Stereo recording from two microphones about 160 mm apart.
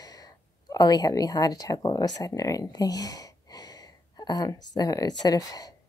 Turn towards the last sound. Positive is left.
turn(degrees=25)  # may be behind; listen again after turning